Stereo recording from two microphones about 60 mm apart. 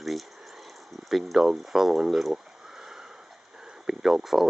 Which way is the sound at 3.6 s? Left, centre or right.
Centre.